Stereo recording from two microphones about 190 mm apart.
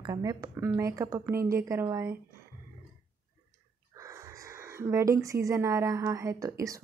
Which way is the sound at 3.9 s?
15° right (ahead or behind).